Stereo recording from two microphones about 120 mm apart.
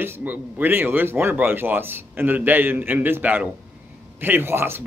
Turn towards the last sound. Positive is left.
turn(degrees=-20)  # may be behind; listen again after turning